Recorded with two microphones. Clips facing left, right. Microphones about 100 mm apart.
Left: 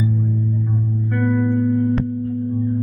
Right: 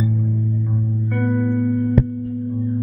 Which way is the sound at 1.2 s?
50° left (ahead or behind).